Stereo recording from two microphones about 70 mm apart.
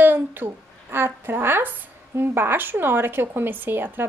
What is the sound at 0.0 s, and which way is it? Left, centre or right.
A woman's voice, right.